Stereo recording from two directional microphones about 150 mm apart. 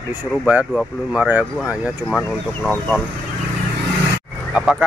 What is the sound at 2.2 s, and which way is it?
Speech, 10° left (ahead or behind).